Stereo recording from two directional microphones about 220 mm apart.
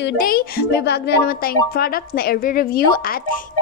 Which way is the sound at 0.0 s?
40° left (ahead or behind).